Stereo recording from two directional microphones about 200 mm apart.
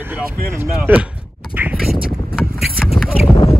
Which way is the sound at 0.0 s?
10° right (ahead or behind).